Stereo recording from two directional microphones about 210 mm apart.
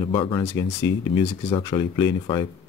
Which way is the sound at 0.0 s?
25° left (ahead or behind).